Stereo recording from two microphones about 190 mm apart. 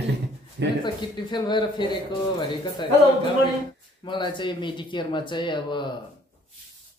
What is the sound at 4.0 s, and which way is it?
Speech, 25° left (ahead or behind).